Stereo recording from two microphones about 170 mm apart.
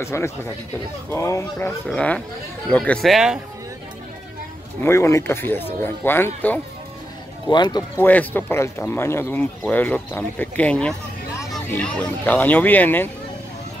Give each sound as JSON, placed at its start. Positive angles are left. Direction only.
{"t": 0.0, "sound": "speech", "side_deg": 15}
{"t": 4.8, "sound": "speech", "side_deg": 15}
{"t": 7.4, "sound": "speech", "side_deg": 25}
{"t": 8.0, "sound": "speech", "side_deg": 10}